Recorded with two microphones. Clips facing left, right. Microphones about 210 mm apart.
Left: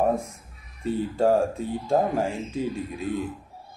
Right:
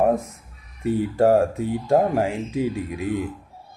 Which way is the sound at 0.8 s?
15° right (ahead or behind).